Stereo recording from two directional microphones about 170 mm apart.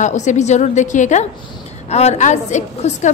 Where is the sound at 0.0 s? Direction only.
45° left (ahead or behind).